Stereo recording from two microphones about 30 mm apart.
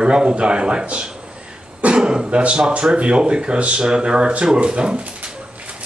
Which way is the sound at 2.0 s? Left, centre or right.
Right.